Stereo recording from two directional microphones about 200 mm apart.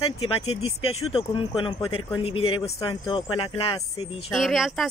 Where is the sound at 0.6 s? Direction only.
90° left.